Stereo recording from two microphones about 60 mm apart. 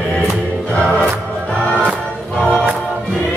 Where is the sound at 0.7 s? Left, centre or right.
Left.